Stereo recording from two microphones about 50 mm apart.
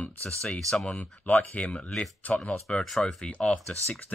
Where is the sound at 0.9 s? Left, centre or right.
Left.